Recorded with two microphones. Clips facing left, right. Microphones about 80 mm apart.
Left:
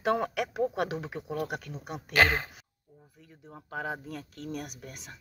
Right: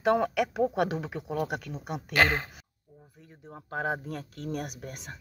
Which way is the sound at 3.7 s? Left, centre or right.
Right.